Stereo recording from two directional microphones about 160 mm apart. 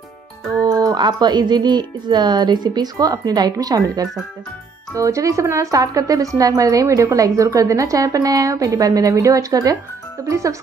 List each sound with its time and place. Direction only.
0.6 s a woman's voice: 20° right (ahead or behind)